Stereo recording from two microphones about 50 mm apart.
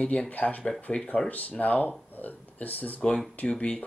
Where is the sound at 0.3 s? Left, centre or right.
Left.